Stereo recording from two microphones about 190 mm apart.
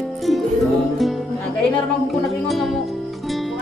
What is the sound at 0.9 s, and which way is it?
Music, centre (ahead or behind).